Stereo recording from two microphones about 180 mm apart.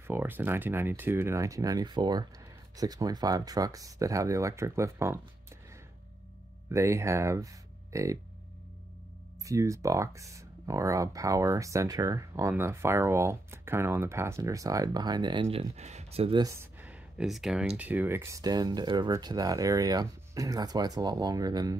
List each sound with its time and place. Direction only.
0.0 s speech: 10° right (ahead or behind)
6.7 s speech: 15° right (ahead or behind)
9.4 s speech: 15° right (ahead or behind)
15.5 s speech: 40° right (ahead or behind)
16.4 s speech: 10° right (ahead or behind)